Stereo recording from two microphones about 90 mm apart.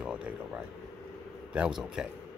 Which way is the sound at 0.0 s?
15° right (ahead or behind).